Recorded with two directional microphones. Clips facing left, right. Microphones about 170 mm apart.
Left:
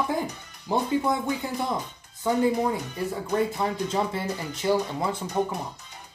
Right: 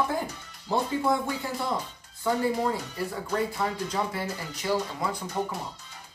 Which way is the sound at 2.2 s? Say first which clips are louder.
Left 3 dB; 20° left (ahead or behind).